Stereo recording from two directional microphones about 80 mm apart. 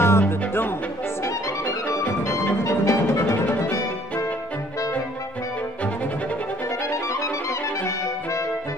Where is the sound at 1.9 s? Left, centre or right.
Left.